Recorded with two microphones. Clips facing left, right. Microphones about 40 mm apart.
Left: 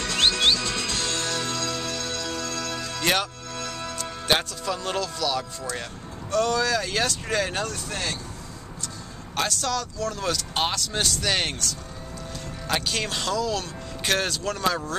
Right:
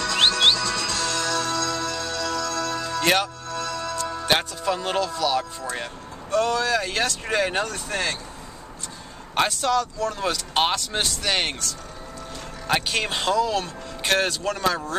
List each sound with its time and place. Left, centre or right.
0.6 s music: left
3.0 s music: centre
3.4 s music: left
4.3 s speech: centre
7.9 s speech: right
9.3 s speech: right